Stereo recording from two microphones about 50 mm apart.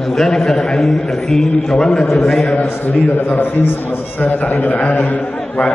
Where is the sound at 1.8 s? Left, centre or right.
Centre.